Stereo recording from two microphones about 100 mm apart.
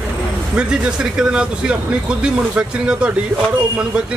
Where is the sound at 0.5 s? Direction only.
10° right (ahead or behind).